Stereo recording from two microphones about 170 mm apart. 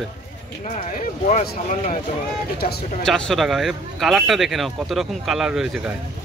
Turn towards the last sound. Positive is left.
turn(degrees=-5)  # may be behind; listen again after turning